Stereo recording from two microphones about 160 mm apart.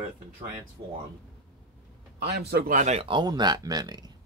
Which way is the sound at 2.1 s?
90° right.